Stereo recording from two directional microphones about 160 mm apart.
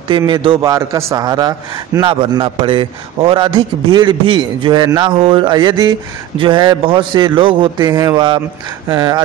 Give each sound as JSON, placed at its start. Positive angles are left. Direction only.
{"t": 0.3, "sound": "a man's voice", "side_deg": -30}